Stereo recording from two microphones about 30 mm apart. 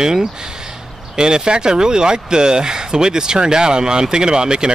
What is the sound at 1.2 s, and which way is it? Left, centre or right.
Speech, right.